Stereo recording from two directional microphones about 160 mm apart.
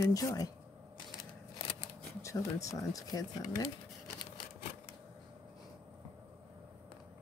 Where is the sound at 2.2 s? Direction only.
20° left (ahead or behind).